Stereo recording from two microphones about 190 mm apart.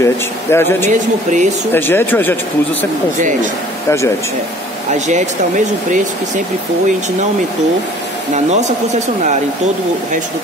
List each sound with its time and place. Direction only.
0.0 s speech: 10° left (ahead or behind)
0.8 s speech: 40° right (ahead or behind)
1.7 s speech: 10° left (ahead or behind)
4.9 s speech: 40° right (ahead or behind)